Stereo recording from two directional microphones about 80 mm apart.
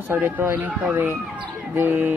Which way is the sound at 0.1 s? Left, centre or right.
Right.